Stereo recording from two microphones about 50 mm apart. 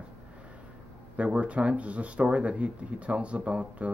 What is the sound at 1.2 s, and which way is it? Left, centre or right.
Speech, right.